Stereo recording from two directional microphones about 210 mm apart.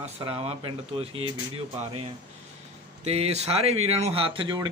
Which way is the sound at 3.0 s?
30° right (ahead or behind).